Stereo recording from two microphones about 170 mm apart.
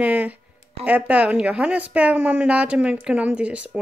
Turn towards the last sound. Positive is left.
turn(degrees=-5)  # may be behind; listen again after turning